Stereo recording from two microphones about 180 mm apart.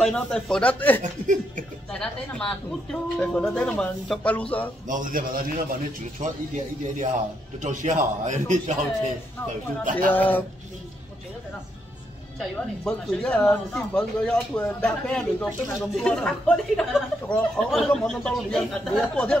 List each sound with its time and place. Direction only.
0.0 s speech: 5° left (ahead or behind)
1.2 s laughter: 45° right (ahead or behind)
1.9 s speech: 5° left (ahead or behind)
4.8 s a man's voice: 45° right (ahead or behind)
9.8 s a man's voice: 50° right (ahead or behind)
10.1 s speech: 10° left (ahead or behind)
12.4 s speech: centre (ahead or behind)